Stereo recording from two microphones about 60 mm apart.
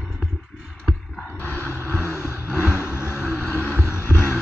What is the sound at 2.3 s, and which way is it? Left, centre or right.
Vehicle, right.